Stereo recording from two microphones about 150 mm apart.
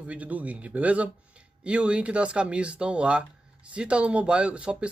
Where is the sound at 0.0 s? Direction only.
10° right (ahead or behind).